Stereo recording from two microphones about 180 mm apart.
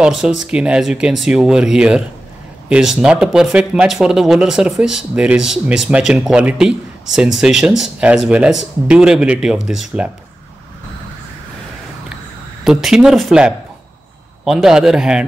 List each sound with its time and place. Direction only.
0.0 s speech: centre (ahead or behind)
12.6 s speech: 5° right (ahead or behind)